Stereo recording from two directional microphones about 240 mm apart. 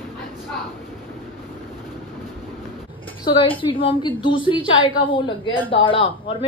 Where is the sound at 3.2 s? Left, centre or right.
Left.